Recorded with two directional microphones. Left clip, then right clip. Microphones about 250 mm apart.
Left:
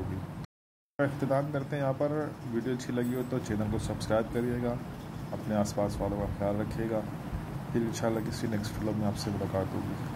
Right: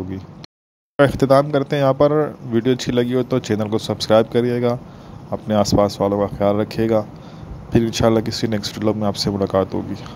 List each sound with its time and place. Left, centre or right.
0.9 s speech: right